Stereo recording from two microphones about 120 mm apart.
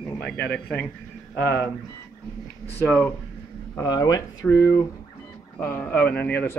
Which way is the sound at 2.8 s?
10° left (ahead or behind).